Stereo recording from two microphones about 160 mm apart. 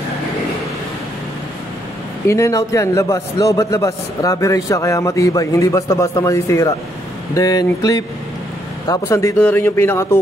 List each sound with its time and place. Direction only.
2.2 s a man's voice: 20° left (ahead or behind)